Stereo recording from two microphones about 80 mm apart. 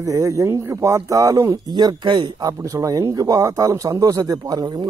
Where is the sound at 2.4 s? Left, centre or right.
Right.